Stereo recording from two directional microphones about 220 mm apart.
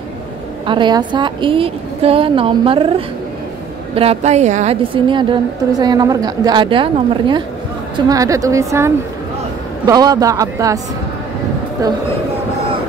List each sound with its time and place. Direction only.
0.7 s a woman's voice: 20° right (ahead or behind)
3.9 s a woman's voice: 25° right (ahead or behind)
11.8 s speech: 15° right (ahead or behind)